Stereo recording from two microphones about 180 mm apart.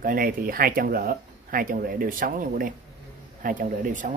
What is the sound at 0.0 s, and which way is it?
Speech, 50° right (ahead or behind).